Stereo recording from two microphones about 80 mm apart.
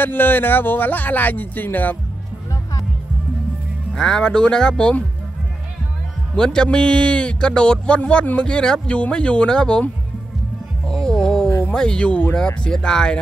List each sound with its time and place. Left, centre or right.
0.0 s speech: left
3.9 s a man's voice: centre
6.3 s a man's voice: centre
10.9 s music: centre
11.7 s a man's voice: centre